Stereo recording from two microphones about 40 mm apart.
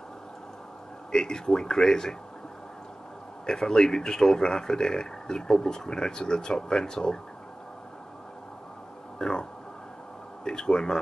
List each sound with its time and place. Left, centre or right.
1.1 s speech: centre
3.4 s speech: centre
9.2 s speech: left